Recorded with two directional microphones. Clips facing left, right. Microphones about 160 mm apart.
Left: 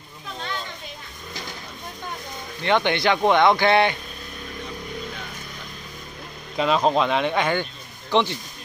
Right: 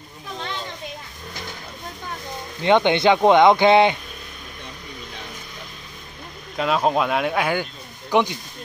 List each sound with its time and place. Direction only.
2.6 s speech: 20° right (ahead or behind)
6.5 s speech: 5° right (ahead or behind)